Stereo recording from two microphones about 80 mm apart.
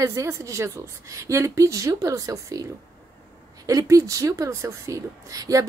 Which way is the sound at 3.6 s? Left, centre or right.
Right.